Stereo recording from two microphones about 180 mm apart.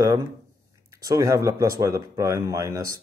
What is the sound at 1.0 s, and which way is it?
Speech, 20° right (ahead or behind).